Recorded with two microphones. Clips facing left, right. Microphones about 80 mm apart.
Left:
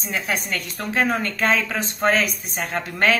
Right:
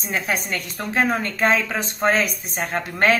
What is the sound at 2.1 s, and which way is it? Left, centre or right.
A woman's voice, right.